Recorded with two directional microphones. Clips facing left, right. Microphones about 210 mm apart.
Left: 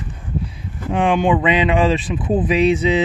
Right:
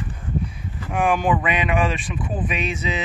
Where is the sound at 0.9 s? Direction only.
25° left (ahead or behind).